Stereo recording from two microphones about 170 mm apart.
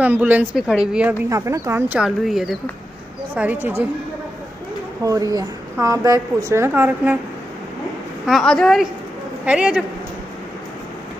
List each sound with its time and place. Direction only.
0.0 s a woman's voice: 10° right (ahead or behind)
1.3 s speech: 15° right (ahead or behind)
5.0 s a woman's voice: 20° right (ahead or behind)
8.3 s a woman's voice: 5° left (ahead or behind)